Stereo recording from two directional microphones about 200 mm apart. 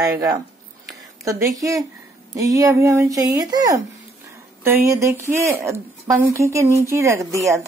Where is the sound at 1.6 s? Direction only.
15° right (ahead or behind).